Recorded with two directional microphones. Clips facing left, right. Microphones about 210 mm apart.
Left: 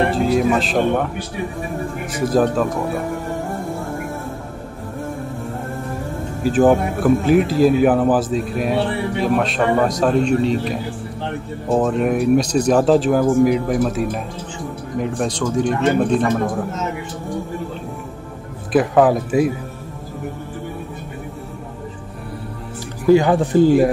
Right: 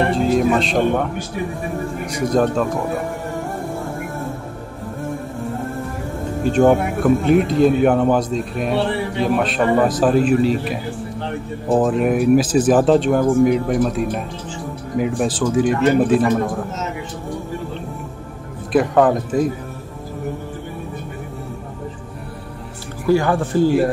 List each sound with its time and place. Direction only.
0.1 s speech: centre (ahead or behind)
2.0 s speech: 5° left (ahead or behind)
6.4 s speech: 5° left (ahead or behind)
18.7 s speech: 5° left (ahead or behind)
23.0 s speech: 20° left (ahead or behind)